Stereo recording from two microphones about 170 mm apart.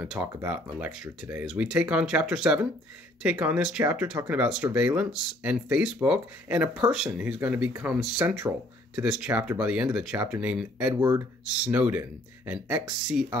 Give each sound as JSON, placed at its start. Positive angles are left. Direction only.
{"t": 0.0, "sound": "speech", "side_deg": -5}
{"t": 11.0, "sound": "speech", "side_deg": -15}
{"t": 11.4, "sound": "speech", "side_deg": -5}